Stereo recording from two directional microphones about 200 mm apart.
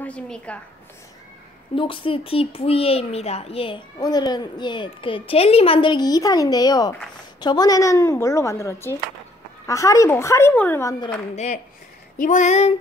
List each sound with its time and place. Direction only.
0.0 s speech: 5° left (ahead or behind)
1.8 s a child's voice: 25° left (ahead or behind)
11.3 s a sound: 35° left (ahead or behind)